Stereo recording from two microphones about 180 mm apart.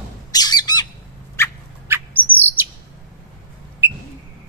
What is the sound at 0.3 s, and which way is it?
Bird, 20° left (ahead or behind).